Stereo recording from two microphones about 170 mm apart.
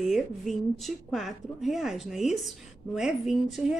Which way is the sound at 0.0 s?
Centre (ahead or behind).